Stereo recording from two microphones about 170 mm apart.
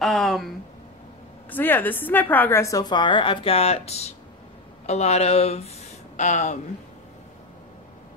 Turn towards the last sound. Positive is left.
turn(degrees=45)  # may be behind; listen again after turning